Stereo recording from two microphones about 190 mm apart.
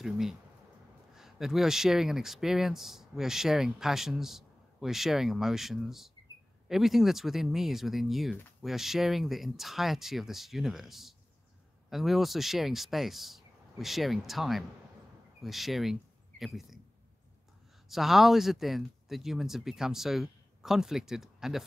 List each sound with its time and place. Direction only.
0.0 s speech: centre (ahead or behind)
17.8 s speech: centre (ahead or behind)